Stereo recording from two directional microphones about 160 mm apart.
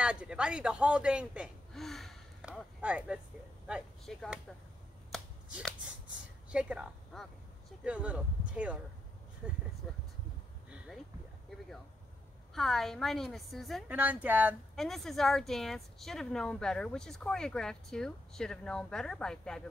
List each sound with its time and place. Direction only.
0.0 s speech: 5° right (ahead or behind)
5.1 s shuffling cards: centre (ahead or behind)
6.5 s speech: 5° right (ahead or behind)
12.5 s speech: centre (ahead or behind)
13.8 s speech: 10° right (ahead or behind)
14.8 s speech: centre (ahead or behind)